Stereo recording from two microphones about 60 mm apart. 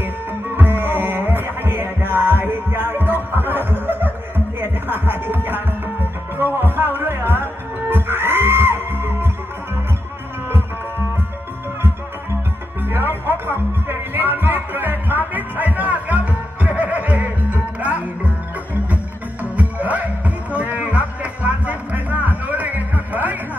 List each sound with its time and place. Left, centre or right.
0.6 s music: right
12.8 s music: right
19.5 s music: right